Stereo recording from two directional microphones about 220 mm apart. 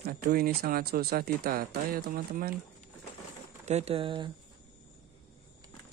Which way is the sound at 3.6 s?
30° right (ahead or behind).